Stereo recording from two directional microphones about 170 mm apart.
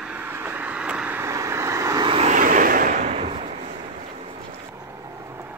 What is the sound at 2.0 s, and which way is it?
Vehicle, 35° right (ahead or behind).